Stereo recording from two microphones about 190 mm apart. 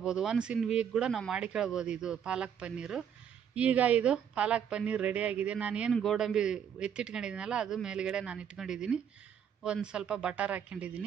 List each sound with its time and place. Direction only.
0.0 s a man's voice: 5° right (ahead or behind)